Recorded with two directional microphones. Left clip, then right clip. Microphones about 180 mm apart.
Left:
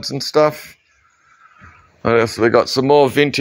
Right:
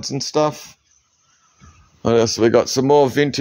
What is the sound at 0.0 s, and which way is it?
Speech, 15° right (ahead or behind).